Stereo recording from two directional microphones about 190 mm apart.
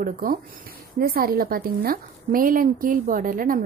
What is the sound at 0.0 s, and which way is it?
A woman's voice, 50° right (ahead or behind).